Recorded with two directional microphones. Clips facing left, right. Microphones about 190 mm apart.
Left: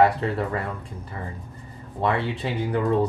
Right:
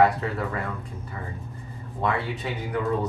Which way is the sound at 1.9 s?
30° left (ahead or behind).